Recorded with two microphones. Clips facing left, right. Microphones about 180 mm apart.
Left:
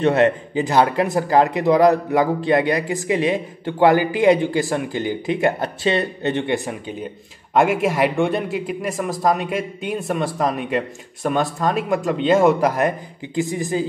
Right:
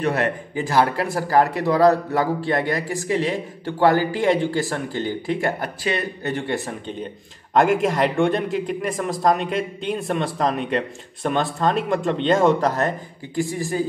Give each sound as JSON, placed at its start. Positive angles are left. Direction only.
{"t": 0.0, "sound": "speech", "side_deg": 20}
{"t": 7.5, "sound": "a man's voice", "side_deg": 5}